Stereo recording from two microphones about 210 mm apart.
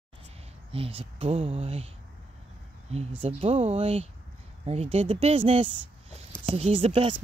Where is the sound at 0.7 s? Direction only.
25° right (ahead or behind).